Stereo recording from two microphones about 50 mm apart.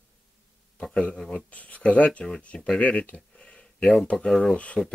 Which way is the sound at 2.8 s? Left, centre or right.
Left.